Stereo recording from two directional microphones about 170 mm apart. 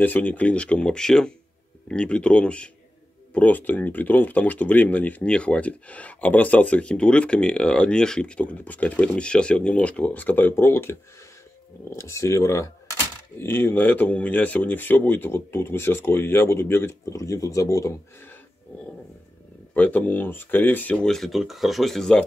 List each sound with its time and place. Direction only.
0.0 s speech: 10° left (ahead or behind)
19.7 s speech: 10° left (ahead or behind)